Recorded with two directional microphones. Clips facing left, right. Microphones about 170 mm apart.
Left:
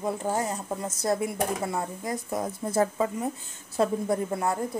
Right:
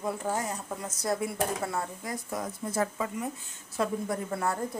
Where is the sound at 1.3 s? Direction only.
20° left (ahead or behind).